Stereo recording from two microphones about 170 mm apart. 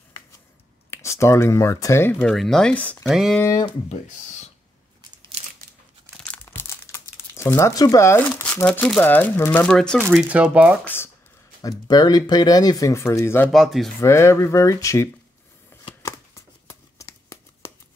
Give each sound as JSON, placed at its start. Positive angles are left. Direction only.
{"t": 0.8, "sound": "speech", "side_deg": 15}
{"t": 2.2, "sound": "speech", "side_deg": 0}
{"t": 3.3, "sound": "speech", "side_deg": 20}
{"t": 5.1, "sound": "crunch", "side_deg": -25}
{"t": 6.2, "sound": "speech", "side_deg": 10}
{"t": 10.0, "sound": "speech", "side_deg": -5}
{"t": 11.9, "sound": "speech", "side_deg": 25}
{"t": 13.5, "sound": "speech", "side_deg": 0}
{"t": 14.0, "sound": "speech", "side_deg": 15}
{"t": 16.0, "sound": "a sound", "side_deg": 20}